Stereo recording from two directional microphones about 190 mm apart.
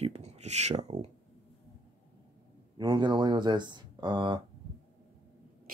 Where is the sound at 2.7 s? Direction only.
25° right (ahead or behind).